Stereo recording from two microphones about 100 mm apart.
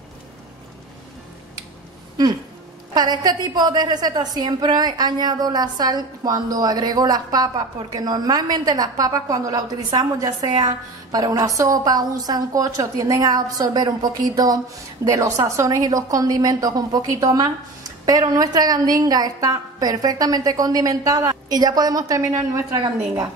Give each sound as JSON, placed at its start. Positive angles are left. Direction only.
{"t": 2.9, "sound": "a woman's voice", "side_deg": -45}